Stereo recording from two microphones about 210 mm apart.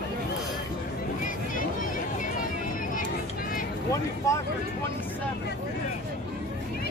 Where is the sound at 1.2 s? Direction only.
40° left (ahead or behind).